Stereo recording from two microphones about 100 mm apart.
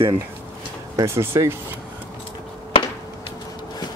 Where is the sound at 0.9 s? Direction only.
25° right (ahead or behind).